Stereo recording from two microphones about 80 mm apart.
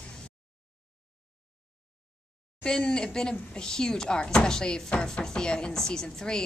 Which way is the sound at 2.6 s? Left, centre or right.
Centre.